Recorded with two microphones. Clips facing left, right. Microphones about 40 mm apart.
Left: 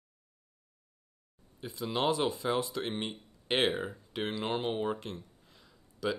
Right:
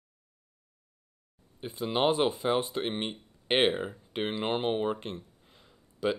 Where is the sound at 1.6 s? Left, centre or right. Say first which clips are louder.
Right 4 dB; right.